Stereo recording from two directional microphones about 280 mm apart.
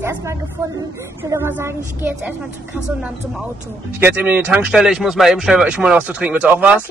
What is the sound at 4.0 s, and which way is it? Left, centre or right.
Speech, centre.